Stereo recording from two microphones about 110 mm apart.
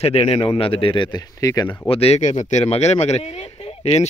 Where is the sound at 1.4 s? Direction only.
35° left (ahead or behind).